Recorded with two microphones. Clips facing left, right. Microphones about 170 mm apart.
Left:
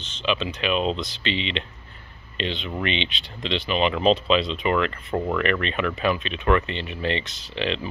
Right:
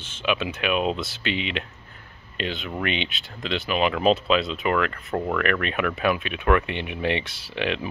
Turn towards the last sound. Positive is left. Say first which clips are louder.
# even
turn(degrees=-10)  # may be behind; listen again after turning